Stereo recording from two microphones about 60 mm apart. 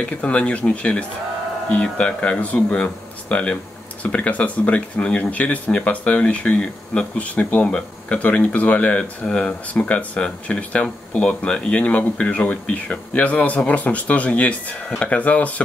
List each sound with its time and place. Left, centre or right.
0.0 s speech: centre
9.2 s speech: centre